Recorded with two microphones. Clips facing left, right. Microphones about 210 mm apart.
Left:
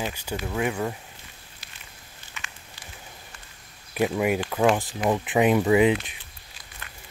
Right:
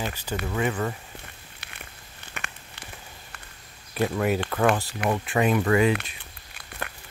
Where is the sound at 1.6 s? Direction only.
65° right (ahead or behind).